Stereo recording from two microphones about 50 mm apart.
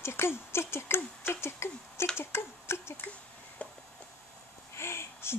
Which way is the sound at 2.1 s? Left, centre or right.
Left.